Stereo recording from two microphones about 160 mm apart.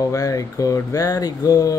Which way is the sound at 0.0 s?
20° left (ahead or behind).